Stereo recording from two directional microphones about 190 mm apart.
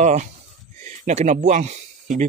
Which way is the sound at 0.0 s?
35° right (ahead or behind).